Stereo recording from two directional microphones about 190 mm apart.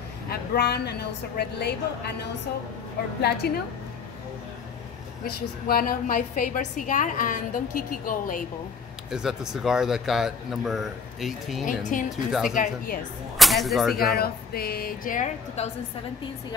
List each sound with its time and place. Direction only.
0.3 s a woman's voice: 60° left (ahead or behind)
5.2 s a woman's voice: 50° left (ahead or behind)
9.1 s a man's voice: 5° right (ahead or behind)
11.8 s a woman's voice: 45° left (ahead or behind)
12.3 s a man's voice: centre (ahead or behind)
12.5 s a woman's voice: 50° left (ahead or behind)
13.4 s speech: centre (ahead or behind)
14.1 s a woman's voice: 55° left (ahead or behind); by 15.7 s 35° left (ahead or behind)